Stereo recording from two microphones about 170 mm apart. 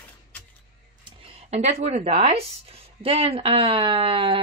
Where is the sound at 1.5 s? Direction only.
40° right (ahead or behind).